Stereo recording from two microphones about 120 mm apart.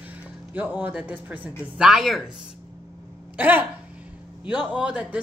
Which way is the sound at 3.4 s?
15° right (ahead or behind).